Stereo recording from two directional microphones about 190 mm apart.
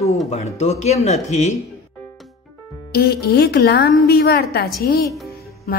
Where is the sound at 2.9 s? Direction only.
55° left (ahead or behind).